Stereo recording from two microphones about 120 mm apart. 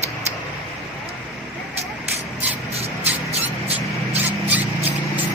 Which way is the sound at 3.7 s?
15° right (ahead or behind).